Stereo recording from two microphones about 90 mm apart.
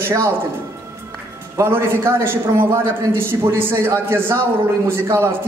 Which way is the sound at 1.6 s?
25° right (ahead or behind).